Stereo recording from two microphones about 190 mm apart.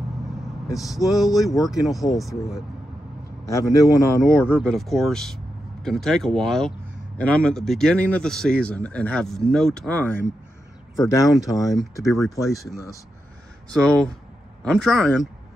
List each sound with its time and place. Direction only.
0.8 s a man's voice: centre (ahead or behind)
3.4 s a man's voice: 15° left (ahead or behind)
4.6 s a man's voice: centre (ahead or behind); by 11.3 s 15° left (ahead or behind)
11.5 s a man's voice: centre (ahead or behind)
12.4 s a man's voice: 15° left (ahead or behind)
13.8 s a man's voice: 5° left (ahead or behind)